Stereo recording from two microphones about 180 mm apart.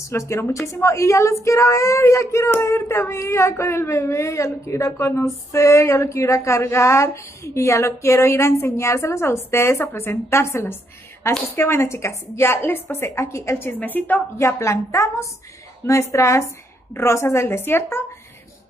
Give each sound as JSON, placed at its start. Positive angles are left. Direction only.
{"t": 0.1, "sound": "a woman's voice", "side_deg": 15}